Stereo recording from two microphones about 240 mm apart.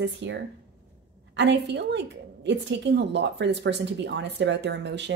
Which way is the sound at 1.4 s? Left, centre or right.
Right.